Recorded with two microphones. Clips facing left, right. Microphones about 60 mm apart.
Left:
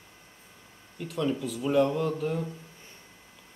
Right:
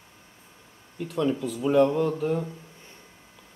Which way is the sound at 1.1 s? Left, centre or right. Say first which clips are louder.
Right 3 dB; centre.